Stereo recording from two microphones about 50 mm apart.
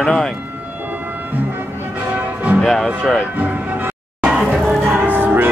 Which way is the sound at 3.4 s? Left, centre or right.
Right.